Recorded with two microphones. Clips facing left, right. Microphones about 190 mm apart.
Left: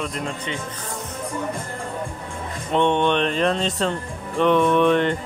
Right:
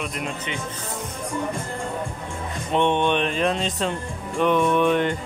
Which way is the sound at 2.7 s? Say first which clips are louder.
Left 1 dB; 15° right (ahead or behind).